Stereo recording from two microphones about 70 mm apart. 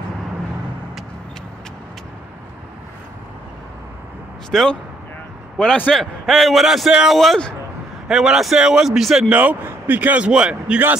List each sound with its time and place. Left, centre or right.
4.5 s speech: centre
5.9 s a man's voice: centre
7.2 s a man's voice: centre
8.1 s speech: centre
9.3 s a man's voice: right